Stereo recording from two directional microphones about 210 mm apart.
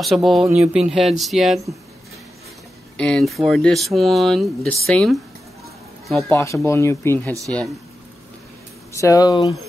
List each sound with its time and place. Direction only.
0.0 s speech: centre (ahead or behind)
3.0 s speech: 5° left (ahead or behind)
6.2 s speech: 15° left (ahead or behind)
8.9 s speech: 15° left (ahead or behind)